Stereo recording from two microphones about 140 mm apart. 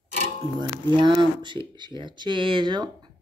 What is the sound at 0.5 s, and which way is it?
Speech, 35° right (ahead or behind).